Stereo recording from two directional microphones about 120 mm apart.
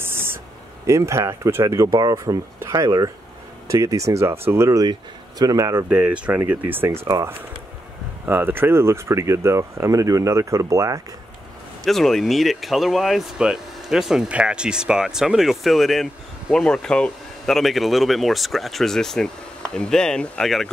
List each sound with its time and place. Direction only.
0.0 s a sound: 20° right (ahead or behind)
0.8 s speech: 25° right (ahead or behind)
5.9 s speech: 15° right (ahead or behind)
11.8 s speech: centre (ahead or behind)